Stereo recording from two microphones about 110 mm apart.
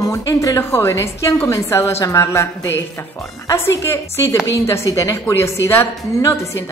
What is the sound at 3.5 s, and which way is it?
A woman's voice, 25° left (ahead or behind).